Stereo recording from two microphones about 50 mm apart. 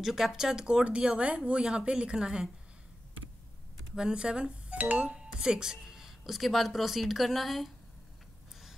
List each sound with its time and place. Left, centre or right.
0.0 s speech: centre
3.9 s speech: centre